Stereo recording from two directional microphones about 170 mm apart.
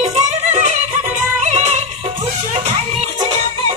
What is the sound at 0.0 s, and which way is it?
Music, 40° right (ahead or behind).